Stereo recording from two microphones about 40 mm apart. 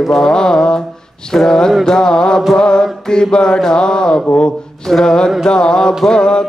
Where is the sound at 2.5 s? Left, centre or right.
Centre.